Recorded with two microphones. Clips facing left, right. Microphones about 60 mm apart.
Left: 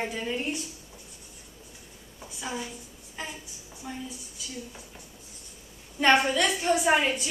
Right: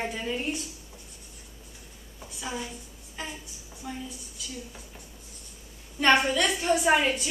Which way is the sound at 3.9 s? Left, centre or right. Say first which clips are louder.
Right 1 dB; centre.